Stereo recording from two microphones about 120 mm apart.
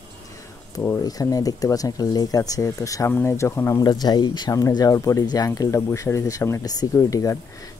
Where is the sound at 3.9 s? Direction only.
35° left (ahead or behind).